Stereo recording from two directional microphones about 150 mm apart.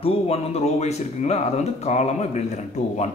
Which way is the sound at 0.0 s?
40° left (ahead or behind).